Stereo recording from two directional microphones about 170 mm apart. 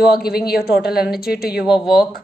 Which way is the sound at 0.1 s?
65° left (ahead or behind).